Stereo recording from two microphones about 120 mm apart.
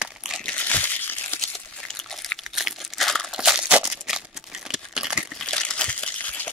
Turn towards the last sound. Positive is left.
turn(degrees=15)  # may be behind; listen again after turning